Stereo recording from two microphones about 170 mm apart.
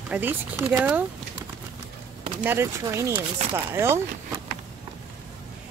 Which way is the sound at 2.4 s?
15° right (ahead or behind).